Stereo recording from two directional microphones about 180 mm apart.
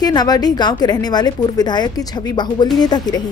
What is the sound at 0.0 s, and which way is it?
A woman's voice, 20° left (ahead or behind).